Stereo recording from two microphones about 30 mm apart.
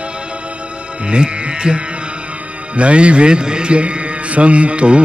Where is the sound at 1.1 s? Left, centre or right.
Right.